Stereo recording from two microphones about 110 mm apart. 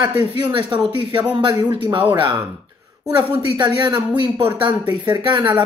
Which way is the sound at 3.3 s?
45° right (ahead or behind).